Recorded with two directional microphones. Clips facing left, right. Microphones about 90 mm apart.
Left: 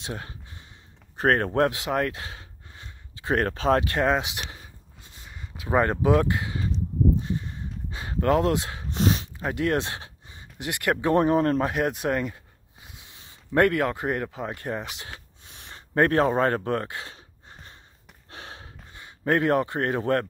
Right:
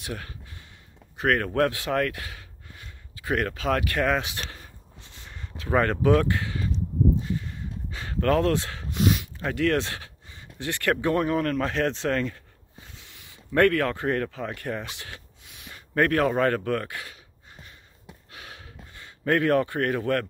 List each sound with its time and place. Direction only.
0.0 s speech: 25° left (ahead or behind)
1.1 s speech: 35° left (ahead or behind); by 4.6 s 15° left (ahead or behind)
5.2 s a sound: 10° left (ahead or behind)
5.7 s speech: 20° left (ahead or behind)
7.2 s a sound: 25° left (ahead or behind)
8.9 s dog: 30° left (ahead or behind)
9.4 s speech: 20° left (ahead or behind)
11.7 s speech: 15° left (ahead or behind)
15.4 s speech: 35° left (ahead or behind)
18.3 s gasp: 30° left (ahead or behind)